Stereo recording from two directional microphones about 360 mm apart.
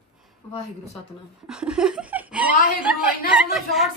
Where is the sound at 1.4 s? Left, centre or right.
Centre.